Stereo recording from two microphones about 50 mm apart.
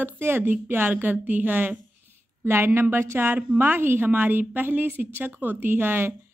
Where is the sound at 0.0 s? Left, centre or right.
Right.